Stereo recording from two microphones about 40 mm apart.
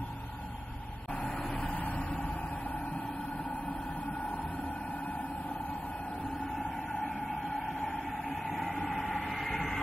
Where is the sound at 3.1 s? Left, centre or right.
Left.